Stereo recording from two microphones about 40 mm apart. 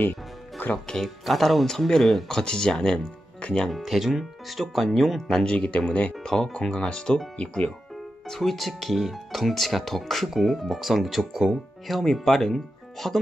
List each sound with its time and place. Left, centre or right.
0.0 s music: left
1.0 s speech: centre
3.4 s music: left
3.7 s speech: centre
5.3 s speech: left
6.2 s speech: centre; by 7.7 s left
8.3 s speech: centre
12.0 s speech: centre